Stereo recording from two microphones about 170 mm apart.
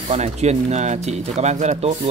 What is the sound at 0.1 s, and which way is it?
Speech, 40° right (ahead or behind).